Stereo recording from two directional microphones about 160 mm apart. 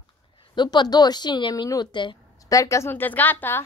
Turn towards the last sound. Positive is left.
turn(degrees=10)  # may be behind; listen again after turning